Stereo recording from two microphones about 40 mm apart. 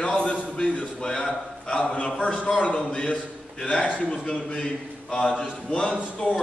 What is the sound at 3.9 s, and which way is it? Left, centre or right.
A man's voice, left.